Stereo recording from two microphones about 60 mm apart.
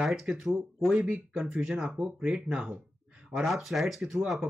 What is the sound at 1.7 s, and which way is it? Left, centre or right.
Speech, centre.